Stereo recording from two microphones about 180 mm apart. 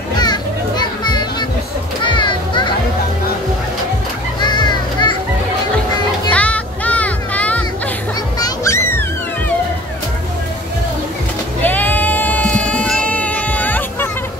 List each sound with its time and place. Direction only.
0.2 s children playing: 25° left (ahead or behind)
4.4 s children playing: 25° left (ahead or behind)
6.3 s music: 5° left (ahead or behind)
8.4 s music: 20° left (ahead or behind)
11.6 s sheep: 10° left (ahead or behind)